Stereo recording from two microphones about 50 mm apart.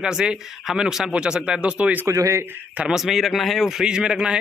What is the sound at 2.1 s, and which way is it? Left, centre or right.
Speech, right.